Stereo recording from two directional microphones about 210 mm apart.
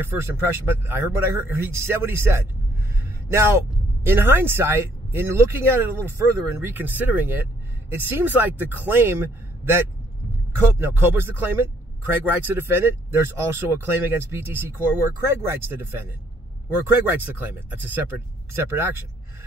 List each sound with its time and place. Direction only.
0.0 s speech: 10° right (ahead or behind)